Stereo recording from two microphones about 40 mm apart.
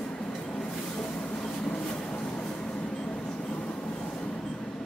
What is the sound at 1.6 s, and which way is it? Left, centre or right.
Vehicle, left.